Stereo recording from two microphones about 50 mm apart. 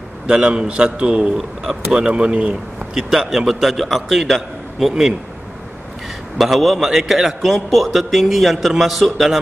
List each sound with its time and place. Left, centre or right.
0.3 s a man's voice: centre
6.3 s a man's voice: centre